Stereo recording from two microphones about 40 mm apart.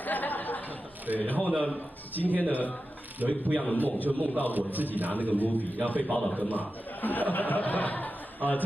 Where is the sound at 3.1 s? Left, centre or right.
Right.